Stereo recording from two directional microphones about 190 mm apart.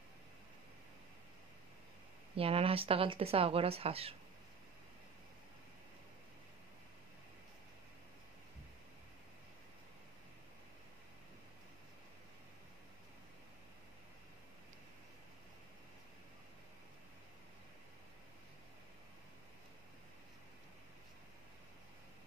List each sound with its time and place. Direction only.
2.3 s speech: 30° right (ahead or behind)